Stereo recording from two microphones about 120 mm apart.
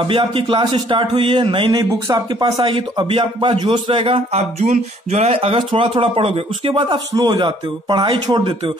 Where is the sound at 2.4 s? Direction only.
45° right (ahead or behind).